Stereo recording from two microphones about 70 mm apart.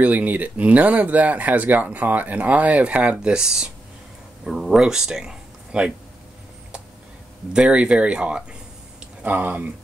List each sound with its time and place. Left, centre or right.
0.0 s speech: right
7.5 s speech: centre
9.2 s speech: right